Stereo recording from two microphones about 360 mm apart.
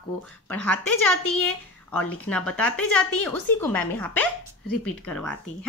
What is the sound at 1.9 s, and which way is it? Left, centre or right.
A woman's voice, centre.